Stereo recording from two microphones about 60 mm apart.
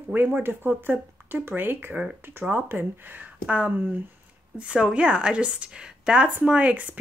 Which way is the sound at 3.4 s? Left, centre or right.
Right.